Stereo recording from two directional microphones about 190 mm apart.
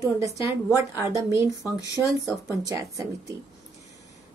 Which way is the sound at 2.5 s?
15° right (ahead or behind).